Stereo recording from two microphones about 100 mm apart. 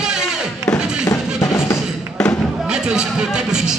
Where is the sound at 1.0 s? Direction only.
35° left (ahead or behind).